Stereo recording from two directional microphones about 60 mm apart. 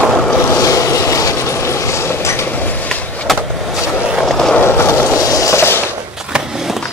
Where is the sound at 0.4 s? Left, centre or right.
Left.